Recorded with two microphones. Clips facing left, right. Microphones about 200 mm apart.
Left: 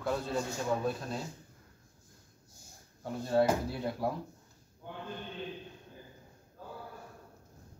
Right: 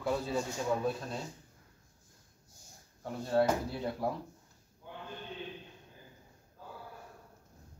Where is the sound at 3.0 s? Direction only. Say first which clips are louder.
Left 1 dB; 5° left (ahead or behind).